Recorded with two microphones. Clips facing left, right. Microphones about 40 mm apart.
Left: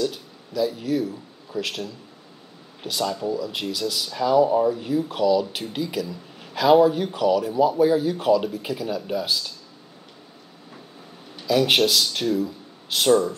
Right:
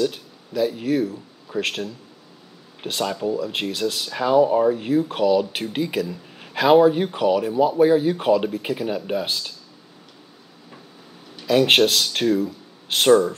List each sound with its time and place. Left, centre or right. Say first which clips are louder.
0.0 s speech: right 3 dB; right
11.4 s speech: right 3 dB; right